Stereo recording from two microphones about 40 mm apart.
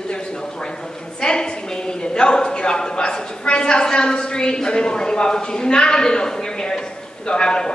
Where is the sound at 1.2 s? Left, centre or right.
Left.